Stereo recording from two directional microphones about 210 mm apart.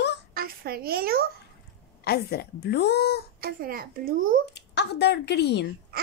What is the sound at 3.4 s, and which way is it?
Speech, 45° right (ahead or behind).